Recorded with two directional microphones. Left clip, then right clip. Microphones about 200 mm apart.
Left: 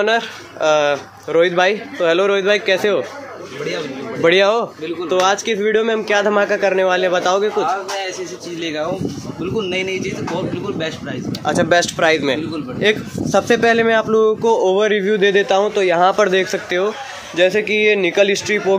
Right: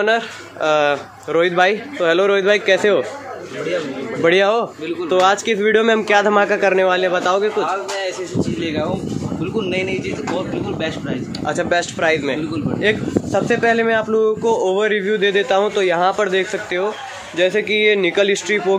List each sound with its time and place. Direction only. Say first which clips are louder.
0.0 s speech: even; 5° left (ahead or behind)
4.2 s speech: left 1 dB; centre (ahead or behind)
9.6 s speech: left 1 dB; 5° left (ahead or behind)
11.5 s speech: left 4 dB; 15° left (ahead or behind); by 16.0 s centre (ahead or behind)
16.0 s speech: left 3 dB; 20° left (ahead or behind)
17.4 s speech: left 1 dB; 10° left (ahead or behind)